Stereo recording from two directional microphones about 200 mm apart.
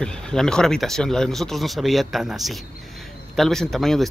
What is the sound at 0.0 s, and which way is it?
Speech, 5° left (ahead or behind).